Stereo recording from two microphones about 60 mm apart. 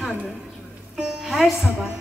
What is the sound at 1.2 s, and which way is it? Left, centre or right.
Speech, centre.